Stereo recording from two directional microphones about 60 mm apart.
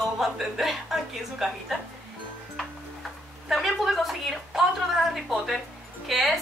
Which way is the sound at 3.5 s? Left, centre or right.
Centre.